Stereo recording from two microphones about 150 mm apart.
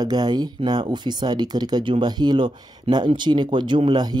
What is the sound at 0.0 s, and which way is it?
Speech, 25° right (ahead or behind).